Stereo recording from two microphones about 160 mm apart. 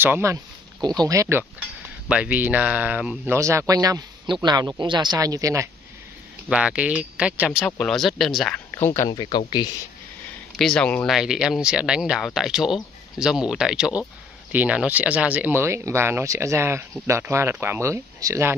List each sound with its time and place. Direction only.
0.0 s speech: 15° right (ahead or behind)
2.0 s speech: 10° right (ahead or behind)
3.3 s speech: 20° right (ahead or behind)
6.5 s speech: 5° right (ahead or behind)
7.6 s speech: 5° left (ahead or behind)
8.7 s speech: 15° left (ahead or behind)
9.1 s speech: 25° left (ahead or behind)
10.6 s speech: 5° left (ahead or behind); by 18.6 s 15° right (ahead or behind)